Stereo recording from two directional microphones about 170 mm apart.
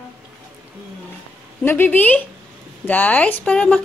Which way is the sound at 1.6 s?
10° left (ahead or behind).